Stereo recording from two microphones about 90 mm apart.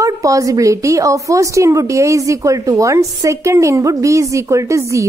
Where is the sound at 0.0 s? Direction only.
40° right (ahead or behind).